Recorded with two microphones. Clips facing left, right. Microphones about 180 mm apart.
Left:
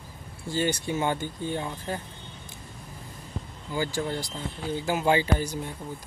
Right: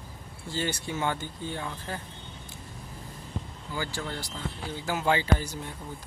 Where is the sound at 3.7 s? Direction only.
15° left (ahead or behind).